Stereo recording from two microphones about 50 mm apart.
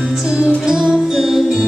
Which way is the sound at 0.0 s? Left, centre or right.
Centre.